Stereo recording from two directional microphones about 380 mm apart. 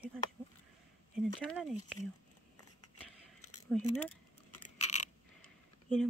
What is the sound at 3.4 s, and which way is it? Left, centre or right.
Keys jangling, left.